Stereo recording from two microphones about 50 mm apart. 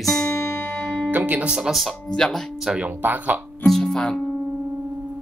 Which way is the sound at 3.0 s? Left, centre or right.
Right.